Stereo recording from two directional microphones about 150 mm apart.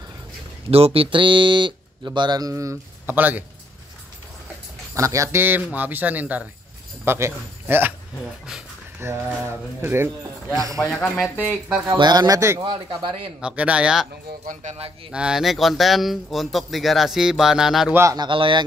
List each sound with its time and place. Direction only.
0.7 s speech: 40° right (ahead or behind); by 3.4 s 10° right (ahead or behind)
4.9 s speech: 20° right (ahead or behind)
9.0 s speech: 15° right (ahead or behind)
11.1 s speech: 5° right (ahead or behind)
11.9 s a man's voice: 30° right (ahead or behind)
12.6 s speech: 35° right (ahead or behind)
13.4 s speech: 5° right (ahead or behind)
14.4 s speech: 50° right (ahead or behind)
15.0 s speech: 5° right (ahead or behind)
17.9 s a man's voice: 25° right (ahead or behind)